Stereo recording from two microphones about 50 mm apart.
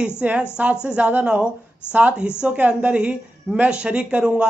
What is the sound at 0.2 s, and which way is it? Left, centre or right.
Speech, right.